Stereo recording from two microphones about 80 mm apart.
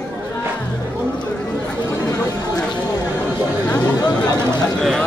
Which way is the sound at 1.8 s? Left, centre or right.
Left.